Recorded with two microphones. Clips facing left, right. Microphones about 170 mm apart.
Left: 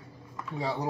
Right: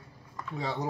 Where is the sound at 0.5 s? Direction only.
10° left (ahead or behind).